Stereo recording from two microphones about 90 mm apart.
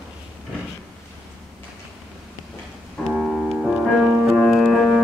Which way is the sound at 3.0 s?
Centre (ahead or behind).